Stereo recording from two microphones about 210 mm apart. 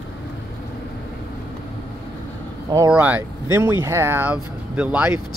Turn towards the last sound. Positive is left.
turn(degrees=-5)  # may be behind; listen again after turning